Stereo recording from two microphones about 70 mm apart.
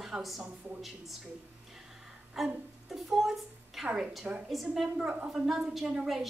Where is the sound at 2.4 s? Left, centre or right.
Centre.